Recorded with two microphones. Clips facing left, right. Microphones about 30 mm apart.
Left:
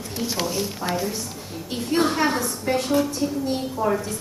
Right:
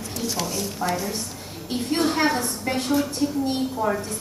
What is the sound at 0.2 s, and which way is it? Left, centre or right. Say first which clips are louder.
Speech: left 2 dB; centre.